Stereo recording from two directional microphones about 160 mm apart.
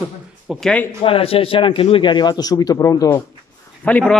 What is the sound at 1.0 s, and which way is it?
A man's voice, 35° left (ahead or behind).